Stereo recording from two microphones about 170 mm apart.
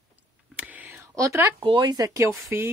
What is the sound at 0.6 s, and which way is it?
Whispering, 10° right (ahead or behind).